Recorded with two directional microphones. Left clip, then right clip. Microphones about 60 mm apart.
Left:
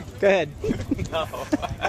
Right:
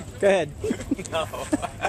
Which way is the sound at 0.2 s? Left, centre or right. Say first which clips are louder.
Left 1 dB; centre.